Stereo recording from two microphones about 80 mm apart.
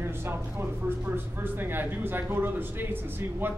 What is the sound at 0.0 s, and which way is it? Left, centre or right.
Speech, right.